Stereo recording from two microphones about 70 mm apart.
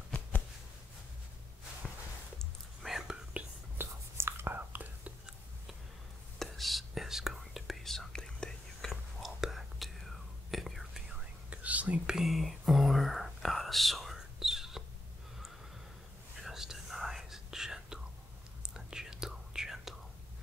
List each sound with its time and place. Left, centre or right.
2.3 s whispering: centre
3.7 s whispering: right
6.4 s whispering: centre
9.2 s whispering: centre
11.1 s whispering: right
12.2 s whispering: centre
16.4 s whispering: centre